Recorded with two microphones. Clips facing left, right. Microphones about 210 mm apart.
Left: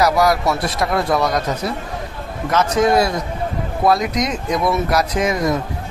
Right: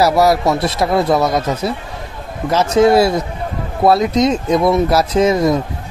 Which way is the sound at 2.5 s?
25° right (ahead or behind).